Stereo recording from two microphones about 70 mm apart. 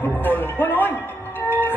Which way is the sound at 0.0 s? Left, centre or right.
Left.